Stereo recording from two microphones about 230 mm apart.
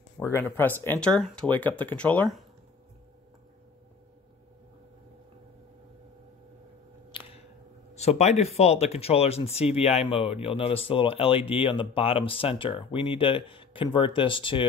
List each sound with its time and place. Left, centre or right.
0.2 s speech: centre
7.1 s a sound: left
7.9 s speech: left